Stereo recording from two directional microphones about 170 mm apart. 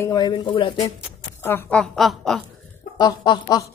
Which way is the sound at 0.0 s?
20° left (ahead or behind).